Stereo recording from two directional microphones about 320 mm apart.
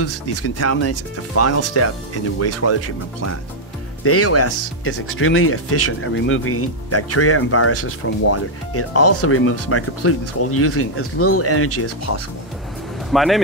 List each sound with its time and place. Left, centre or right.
0.0 s speech: left
4.0 s speech: left
13.1 s speech: centre